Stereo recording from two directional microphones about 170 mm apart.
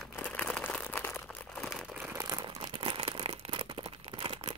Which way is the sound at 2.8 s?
30° right (ahead or behind).